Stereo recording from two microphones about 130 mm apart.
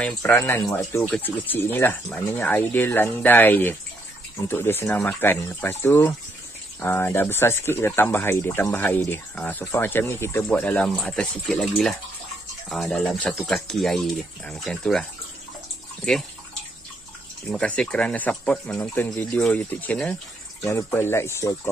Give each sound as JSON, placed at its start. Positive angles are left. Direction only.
{"t": 0.2, "sound": "speech", "side_deg": 20}
{"t": 1.0, "sound": "speech", "side_deg": 10}
{"t": 17.5, "sound": "speech", "side_deg": 5}